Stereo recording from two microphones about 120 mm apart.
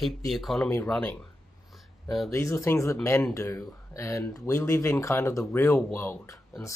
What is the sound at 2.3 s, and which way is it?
Speech, 25° left (ahead or behind).